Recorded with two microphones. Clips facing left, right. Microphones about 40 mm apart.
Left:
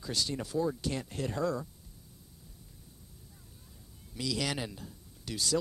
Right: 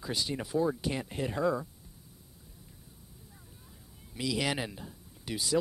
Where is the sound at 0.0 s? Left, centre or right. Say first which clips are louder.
Right 1 dB; centre.